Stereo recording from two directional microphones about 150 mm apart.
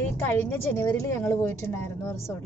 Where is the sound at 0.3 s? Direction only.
15° left (ahead or behind).